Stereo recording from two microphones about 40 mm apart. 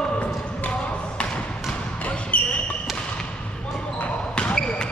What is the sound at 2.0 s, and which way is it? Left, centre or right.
Basketball bounce, left.